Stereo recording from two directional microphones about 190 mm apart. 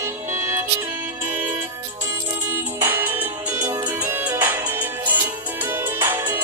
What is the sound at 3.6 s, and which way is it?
Music, 20° right (ahead or behind).